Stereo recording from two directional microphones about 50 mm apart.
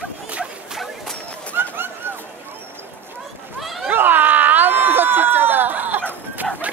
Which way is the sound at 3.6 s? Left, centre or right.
Centre.